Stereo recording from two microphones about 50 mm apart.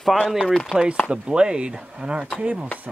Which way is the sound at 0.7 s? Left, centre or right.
Left.